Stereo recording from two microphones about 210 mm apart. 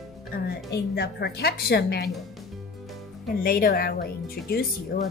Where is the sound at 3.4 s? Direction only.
45° left (ahead or behind).